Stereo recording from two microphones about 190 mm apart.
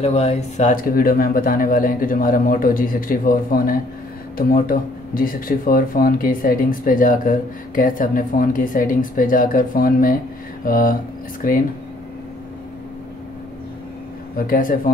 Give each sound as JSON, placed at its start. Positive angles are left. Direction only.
{"t": 0.0, "sound": "speech", "side_deg": 35}
{"t": 14.3, "sound": "speech", "side_deg": 45}